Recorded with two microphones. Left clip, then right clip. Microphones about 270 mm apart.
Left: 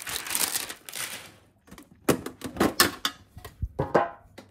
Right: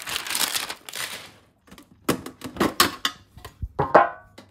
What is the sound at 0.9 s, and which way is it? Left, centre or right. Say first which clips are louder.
Typewriter: right 4 dB; right.